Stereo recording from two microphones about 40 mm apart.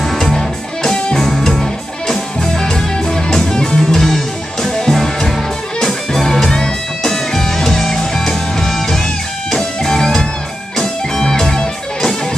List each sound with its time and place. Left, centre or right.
0.0 s music: centre
4.9 s music: centre